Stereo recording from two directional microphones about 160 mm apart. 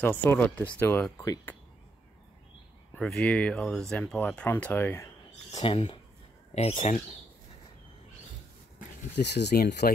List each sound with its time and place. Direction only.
0.0 s speech: 10° left (ahead or behind)
1.1 s speech: 25° left (ahead or behind)
3.0 s speech: 5° left (ahead or behind)
5.5 s speech: 35° left (ahead or behind)
6.5 s speech: 40° left (ahead or behind)
9.1 s speech: 90° left